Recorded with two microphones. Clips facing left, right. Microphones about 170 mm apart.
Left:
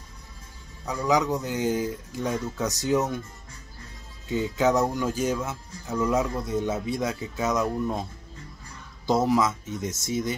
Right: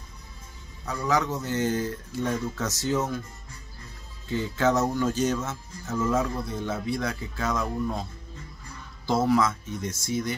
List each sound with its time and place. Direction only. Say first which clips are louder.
0.8 s speech: left 2 dB; 15° left (ahead or behind)
4.3 s speech: left 1 dB; 15° left (ahead or behind)
9.0 s speech: left 1 dB; 20° left (ahead or behind)